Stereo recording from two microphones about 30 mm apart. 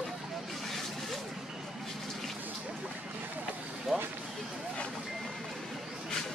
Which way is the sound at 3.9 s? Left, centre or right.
Left.